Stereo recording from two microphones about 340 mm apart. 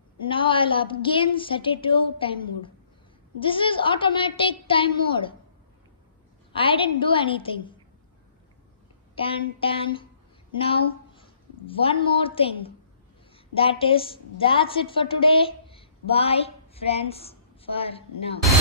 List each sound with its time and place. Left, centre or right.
0.3 s a woman's voice: centre
6.5 s a woman's voice: centre
9.1 s a woman's voice: centre